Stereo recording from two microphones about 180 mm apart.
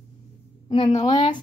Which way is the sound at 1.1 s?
25° left (ahead or behind).